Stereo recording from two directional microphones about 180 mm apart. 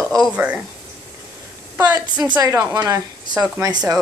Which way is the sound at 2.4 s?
20° right (ahead or behind).